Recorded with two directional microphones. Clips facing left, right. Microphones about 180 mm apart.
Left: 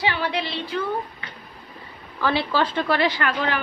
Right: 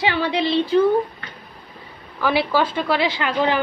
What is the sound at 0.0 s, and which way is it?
Speech, 25° right (ahead or behind).